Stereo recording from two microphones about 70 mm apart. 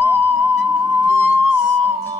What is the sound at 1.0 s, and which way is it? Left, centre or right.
Music, right.